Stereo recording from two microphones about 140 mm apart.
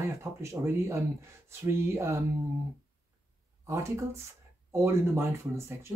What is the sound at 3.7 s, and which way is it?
Speech, 20° right (ahead or behind).